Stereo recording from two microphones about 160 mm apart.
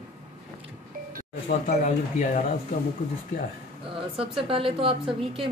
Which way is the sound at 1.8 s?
50° left (ahead or behind).